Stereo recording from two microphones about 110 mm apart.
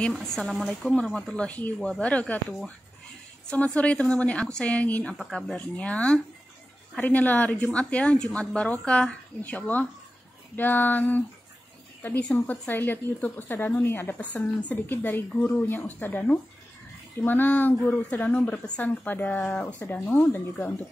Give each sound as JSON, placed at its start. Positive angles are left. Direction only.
{"t": 0.7, "sound": "speech", "side_deg": 5}